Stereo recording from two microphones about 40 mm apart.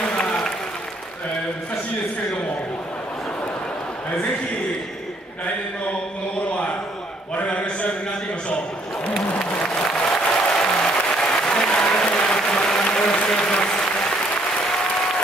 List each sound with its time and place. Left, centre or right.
0.0 s applause: left
6.5 s a sound: left
9.4 s applause: centre